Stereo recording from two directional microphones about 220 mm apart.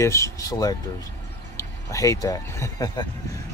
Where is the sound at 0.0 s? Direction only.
15° left (ahead or behind).